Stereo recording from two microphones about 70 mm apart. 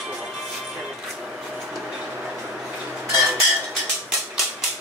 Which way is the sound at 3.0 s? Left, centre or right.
Centre.